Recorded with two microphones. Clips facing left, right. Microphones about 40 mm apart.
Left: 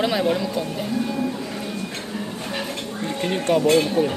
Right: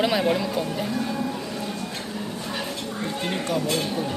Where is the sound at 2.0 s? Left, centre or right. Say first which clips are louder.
Left 2 dB; centre.